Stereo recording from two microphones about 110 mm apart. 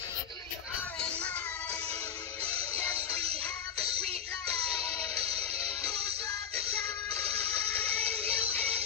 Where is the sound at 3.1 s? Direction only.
65° right (ahead or behind).